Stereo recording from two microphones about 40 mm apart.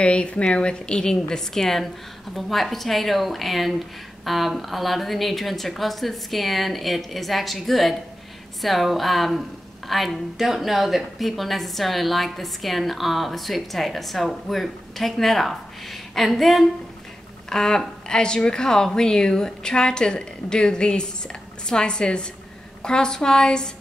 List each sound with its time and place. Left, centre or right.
0.0 s a woman's voice: left
1.5 s a woman's voice: centre
17.5 s a woman's voice: centre